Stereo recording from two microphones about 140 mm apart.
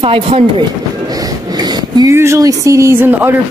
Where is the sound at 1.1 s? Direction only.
25° right (ahead or behind).